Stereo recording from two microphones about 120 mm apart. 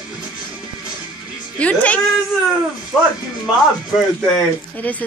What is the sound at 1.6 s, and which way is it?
Speech, 10° left (ahead or behind).